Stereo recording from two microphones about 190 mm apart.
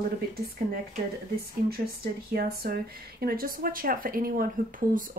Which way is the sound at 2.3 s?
55° right (ahead or behind).